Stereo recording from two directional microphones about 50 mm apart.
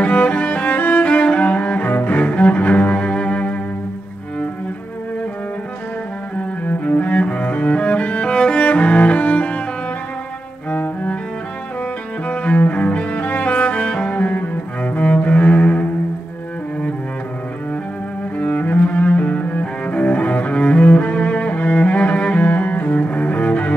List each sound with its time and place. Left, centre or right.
0.0 s music: left
0.7 s music: left
1.0 s cello: left
6.3 s cello: left
10.7 s cello: left
12.3 s cello: left
18.4 s cello: left